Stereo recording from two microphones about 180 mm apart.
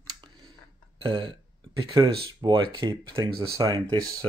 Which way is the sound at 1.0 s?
30° right (ahead or behind).